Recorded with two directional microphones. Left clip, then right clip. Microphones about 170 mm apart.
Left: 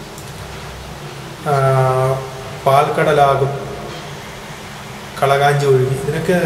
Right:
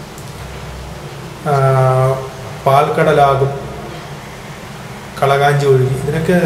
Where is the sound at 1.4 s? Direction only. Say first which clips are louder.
Right 2 dB; 20° right (ahead or behind).